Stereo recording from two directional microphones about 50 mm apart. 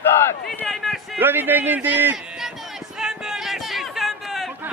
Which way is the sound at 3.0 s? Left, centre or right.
Centre.